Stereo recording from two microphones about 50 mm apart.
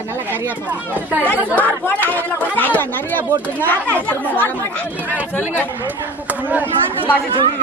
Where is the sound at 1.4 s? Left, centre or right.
Left.